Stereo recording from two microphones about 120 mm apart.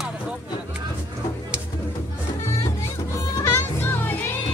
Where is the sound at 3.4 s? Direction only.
20° left (ahead or behind).